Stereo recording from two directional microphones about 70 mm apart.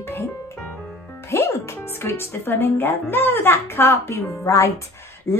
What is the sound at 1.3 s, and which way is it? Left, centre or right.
Speech, left.